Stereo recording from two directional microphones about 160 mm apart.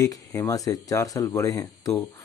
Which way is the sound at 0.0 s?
20° left (ahead or behind).